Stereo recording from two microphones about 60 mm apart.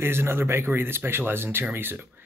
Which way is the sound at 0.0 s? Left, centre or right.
Right.